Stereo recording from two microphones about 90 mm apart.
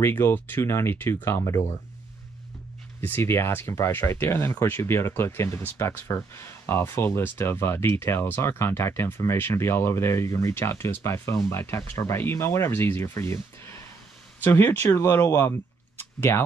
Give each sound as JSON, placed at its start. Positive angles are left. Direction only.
{"t": 0.0, "sound": "speech", "side_deg": 25}
{"t": 3.0, "sound": "speech", "side_deg": 25}
{"t": 16.0, "sound": "a sound", "side_deg": 30}